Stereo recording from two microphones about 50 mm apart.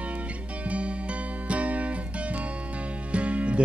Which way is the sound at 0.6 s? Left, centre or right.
Right.